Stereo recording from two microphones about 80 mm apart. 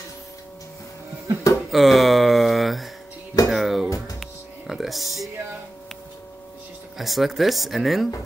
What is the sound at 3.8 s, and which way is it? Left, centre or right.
Music, left.